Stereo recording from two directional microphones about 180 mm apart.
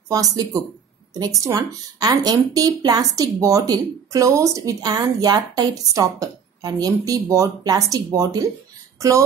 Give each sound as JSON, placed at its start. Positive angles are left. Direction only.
{"t": 0.1, "sound": "a woman's voice", "side_deg": -20}